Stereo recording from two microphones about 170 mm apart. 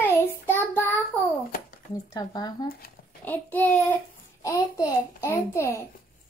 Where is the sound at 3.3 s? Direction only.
10° left (ahead or behind).